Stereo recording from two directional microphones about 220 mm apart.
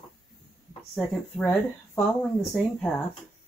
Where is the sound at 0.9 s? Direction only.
5° left (ahead or behind).